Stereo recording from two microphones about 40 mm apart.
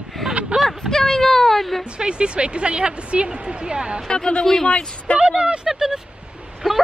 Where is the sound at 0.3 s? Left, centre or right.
Right.